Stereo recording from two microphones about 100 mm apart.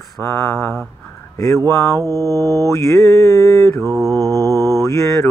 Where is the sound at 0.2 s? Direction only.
20° left (ahead or behind).